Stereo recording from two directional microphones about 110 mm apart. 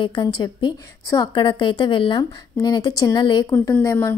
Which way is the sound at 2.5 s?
40° left (ahead or behind).